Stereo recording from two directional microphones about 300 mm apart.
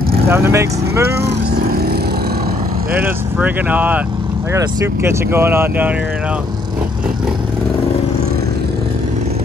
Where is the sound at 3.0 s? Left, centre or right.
Centre.